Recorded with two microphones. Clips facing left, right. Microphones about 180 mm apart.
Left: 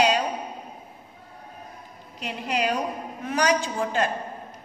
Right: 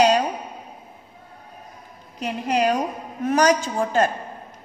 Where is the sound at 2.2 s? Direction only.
45° right (ahead or behind).